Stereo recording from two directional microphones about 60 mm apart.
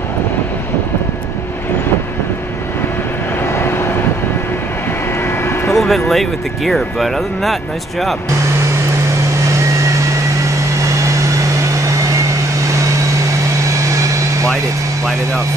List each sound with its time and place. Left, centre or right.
3.4 s vehicle: left
5.4 s vehicle: left
5.8 s speech: centre